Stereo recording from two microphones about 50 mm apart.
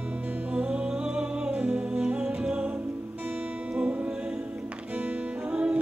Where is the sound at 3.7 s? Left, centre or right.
Right.